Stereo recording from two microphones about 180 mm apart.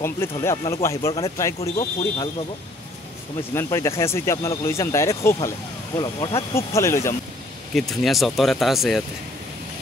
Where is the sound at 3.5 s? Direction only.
15° left (ahead or behind).